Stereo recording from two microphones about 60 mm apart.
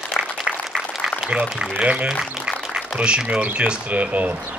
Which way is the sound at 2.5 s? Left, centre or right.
Centre.